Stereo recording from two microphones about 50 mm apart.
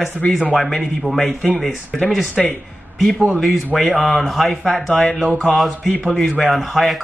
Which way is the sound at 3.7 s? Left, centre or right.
Centre.